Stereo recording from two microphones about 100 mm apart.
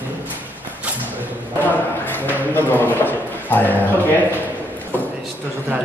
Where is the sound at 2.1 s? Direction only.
20° left (ahead or behind).